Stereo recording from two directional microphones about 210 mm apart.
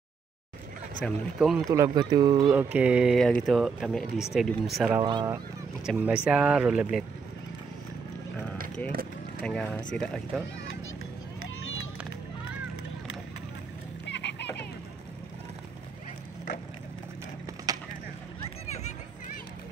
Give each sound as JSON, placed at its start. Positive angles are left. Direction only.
{"t": 1.0, "sound": "speech", "side_deg": 0}
{"t": 1.7, "sound": "speech", "side_deg": -15}
{"t": 2.5, "sound": "speech", "side_deg": -5}
{"t": 4.9, "sound": "speech", "side_deg": -20}
{"t": 5.9, "sound": "speech", "side_deg": -5}
{"t": 9.4, "sound": "speech", "side_deg": 5}
{"t": 14.0, "sound": "a sound", "side_deg": 55}
{"t": 17.7, "sound": "a sound", "side_deg": -15}